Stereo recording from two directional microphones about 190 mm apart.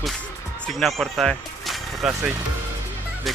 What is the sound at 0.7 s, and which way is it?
Speech, centre (ahead or behind).